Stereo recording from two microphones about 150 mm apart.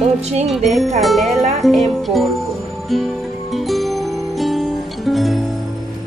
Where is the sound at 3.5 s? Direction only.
Centre (ahead or behind).